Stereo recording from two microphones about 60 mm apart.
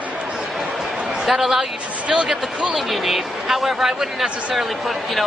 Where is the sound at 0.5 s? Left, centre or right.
Centre.